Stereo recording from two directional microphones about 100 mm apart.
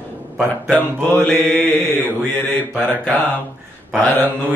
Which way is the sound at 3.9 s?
15° left (ahead or behind).